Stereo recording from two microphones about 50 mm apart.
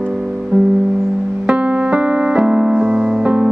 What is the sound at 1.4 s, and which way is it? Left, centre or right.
Music, right.